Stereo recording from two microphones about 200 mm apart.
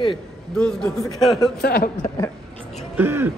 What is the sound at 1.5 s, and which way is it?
Speech, 50° left (ahead or behind).